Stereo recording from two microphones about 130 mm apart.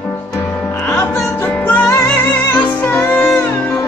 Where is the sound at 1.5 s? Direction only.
15° left (ahead or behind).